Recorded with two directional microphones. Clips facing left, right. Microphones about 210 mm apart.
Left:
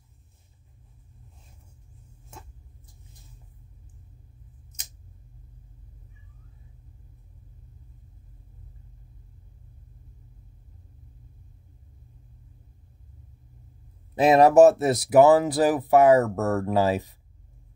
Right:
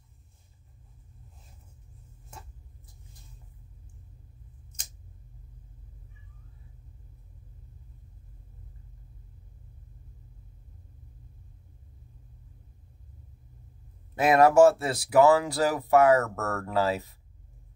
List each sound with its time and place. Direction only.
14.2 s speech: 20° left (ahead or behind)